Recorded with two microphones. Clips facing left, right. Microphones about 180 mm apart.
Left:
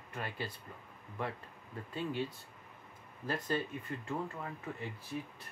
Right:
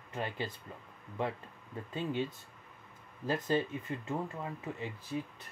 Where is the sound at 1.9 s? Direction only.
20° right (ahead or behind).